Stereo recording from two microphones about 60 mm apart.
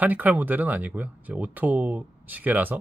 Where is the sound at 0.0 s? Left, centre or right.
Right.